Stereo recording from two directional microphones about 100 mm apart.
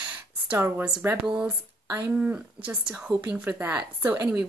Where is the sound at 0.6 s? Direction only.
20° right (ahead or behind).